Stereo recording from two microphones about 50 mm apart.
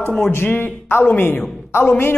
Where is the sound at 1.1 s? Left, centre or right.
Left.